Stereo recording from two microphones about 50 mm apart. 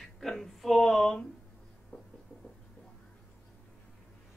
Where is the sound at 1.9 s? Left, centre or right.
Left.